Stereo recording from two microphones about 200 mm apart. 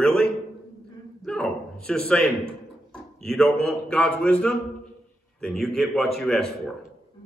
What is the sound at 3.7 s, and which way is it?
A man's voice, 5° left (ahead or behind).